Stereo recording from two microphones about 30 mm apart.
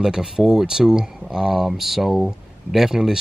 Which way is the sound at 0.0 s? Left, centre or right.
Centre.